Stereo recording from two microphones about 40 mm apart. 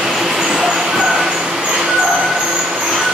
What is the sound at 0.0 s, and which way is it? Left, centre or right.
Vehicle, centre.